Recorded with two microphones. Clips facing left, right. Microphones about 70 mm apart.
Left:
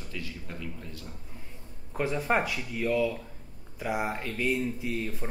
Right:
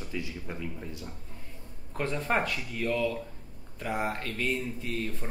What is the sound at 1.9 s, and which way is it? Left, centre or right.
Speech, centre.